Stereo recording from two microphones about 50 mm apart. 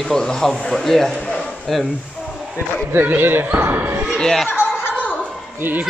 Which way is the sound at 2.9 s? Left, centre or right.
Right.